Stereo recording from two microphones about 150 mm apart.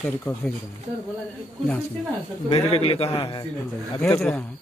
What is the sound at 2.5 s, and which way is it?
A man's voice, 40° left (ahead or behind).